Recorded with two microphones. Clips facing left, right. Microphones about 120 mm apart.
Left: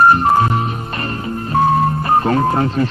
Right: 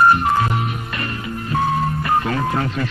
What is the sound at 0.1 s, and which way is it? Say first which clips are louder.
Music: left 4 dB; 35° left (ahead or behind).